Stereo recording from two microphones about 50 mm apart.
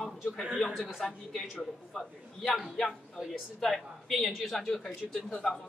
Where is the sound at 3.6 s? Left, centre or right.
Centre.